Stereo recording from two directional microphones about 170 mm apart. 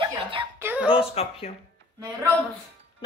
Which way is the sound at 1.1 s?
35° left (ahead or behind).